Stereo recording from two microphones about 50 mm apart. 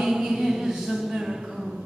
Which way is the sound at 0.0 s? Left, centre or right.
Centre.